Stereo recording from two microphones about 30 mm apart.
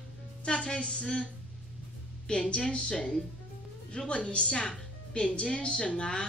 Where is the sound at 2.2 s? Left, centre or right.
Left.